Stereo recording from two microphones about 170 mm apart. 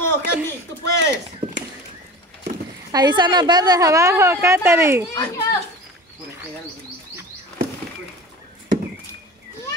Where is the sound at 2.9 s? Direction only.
25° right (ahead or behind).